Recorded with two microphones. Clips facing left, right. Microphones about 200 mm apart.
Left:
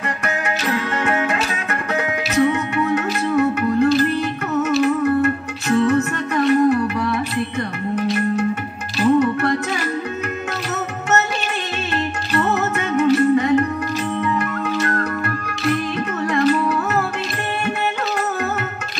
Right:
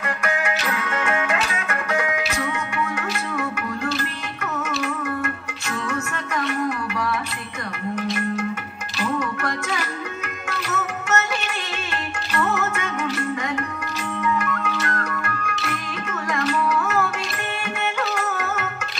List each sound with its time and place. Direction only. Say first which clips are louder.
0.2 s music: left 1 dB; 35° left (ahead or behind)
8.9 s music: left 10 dB; 35° left (ahead or behind)
10.7 s music: left 3 dB; 35° left (ahead or behind)
12.4 s music: left 4 dB; 35° left (ahead or behind)
18.1 s music: left 4 dB; 35° left (ahead or behind)